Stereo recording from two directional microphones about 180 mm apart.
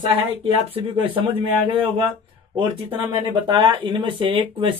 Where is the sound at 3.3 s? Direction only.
25° right (ahead or behind).